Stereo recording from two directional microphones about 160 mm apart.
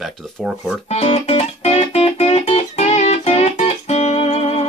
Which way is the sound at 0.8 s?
40° left (ahead or behind).